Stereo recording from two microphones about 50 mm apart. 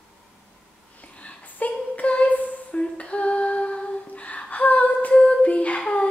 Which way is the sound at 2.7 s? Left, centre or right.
Left.